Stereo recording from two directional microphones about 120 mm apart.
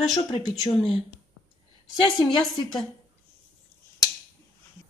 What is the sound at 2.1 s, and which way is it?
Speech, 35° left (ahead or behind).